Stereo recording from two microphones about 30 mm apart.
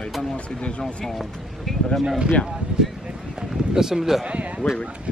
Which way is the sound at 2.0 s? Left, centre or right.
Right.